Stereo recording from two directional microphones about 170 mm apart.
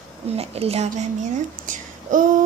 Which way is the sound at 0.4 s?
35° right (ahead or behind).